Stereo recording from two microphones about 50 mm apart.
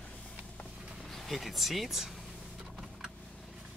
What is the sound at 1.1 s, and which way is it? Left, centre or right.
Speech, centre.